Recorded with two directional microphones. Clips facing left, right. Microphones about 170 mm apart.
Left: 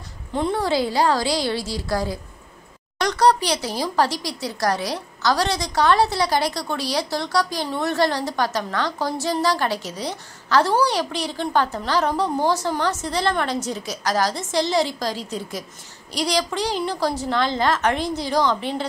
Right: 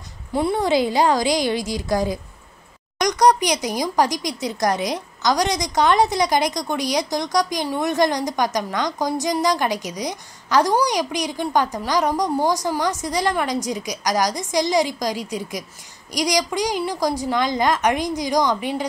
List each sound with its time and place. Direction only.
0.3 s speech: 10° right (ahead or behind)